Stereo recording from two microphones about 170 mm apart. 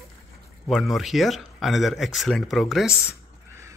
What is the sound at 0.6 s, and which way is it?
Speech, centre (ahead or behind).